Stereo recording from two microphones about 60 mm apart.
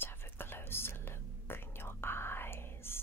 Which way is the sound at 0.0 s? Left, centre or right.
Left.